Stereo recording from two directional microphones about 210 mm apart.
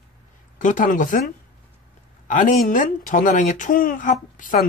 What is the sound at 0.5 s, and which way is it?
Speech, 40° left (ahead or behind).